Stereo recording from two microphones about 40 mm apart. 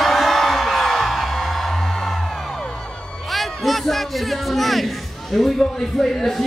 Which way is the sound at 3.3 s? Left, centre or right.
Centre.